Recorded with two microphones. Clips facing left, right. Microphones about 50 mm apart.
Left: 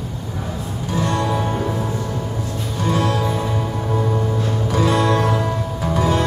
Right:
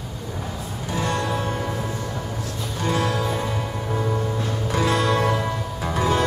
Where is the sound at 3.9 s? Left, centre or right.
Centre.